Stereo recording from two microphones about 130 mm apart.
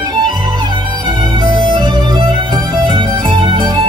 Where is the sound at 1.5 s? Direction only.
35° right (ahead or behind).